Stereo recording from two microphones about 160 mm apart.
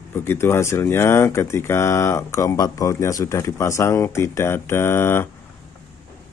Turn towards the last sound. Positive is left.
turn(degrees=15)  # may be behind; listen again after turning